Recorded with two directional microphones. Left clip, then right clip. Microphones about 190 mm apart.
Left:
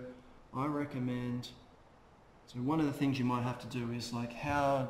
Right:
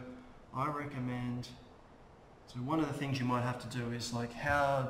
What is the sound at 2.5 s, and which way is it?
Speech, 20° left (ahead or behind).